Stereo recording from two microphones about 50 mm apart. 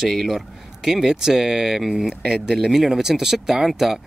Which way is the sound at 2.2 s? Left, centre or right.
Centre.